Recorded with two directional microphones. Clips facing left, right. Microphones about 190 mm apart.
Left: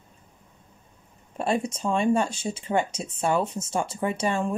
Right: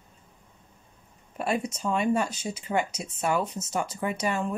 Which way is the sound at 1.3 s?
30° left (ahead or behind).